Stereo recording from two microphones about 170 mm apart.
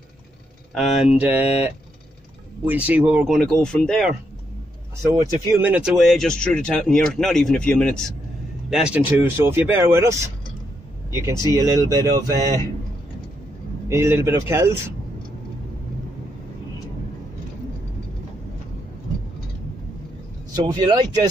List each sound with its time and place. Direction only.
0.7 s speech: 5° right (ahead or behind)
3.3 s speech: 5° left (ahead or behind)
5.1 s speech: 15° right (ahead or behind)
5.7 s speech: 5° right (ahead or behind)
9.1 s speech: 15° right (ahead or behind)
13.8 s speech: 15° right (ahead or behind)
20.5 s speech: 25° right (ahead or behind)